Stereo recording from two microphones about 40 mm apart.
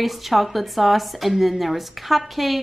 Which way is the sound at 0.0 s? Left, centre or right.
Centre.